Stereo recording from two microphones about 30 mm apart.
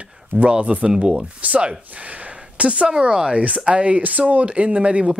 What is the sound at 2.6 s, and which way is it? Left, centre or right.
Speech, right.